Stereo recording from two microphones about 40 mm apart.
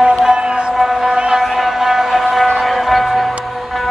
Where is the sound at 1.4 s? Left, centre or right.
Centre.